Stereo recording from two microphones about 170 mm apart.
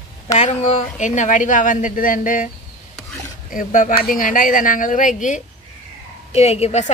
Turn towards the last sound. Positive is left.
turn(degrees=40)  # may be behind; listen again after turning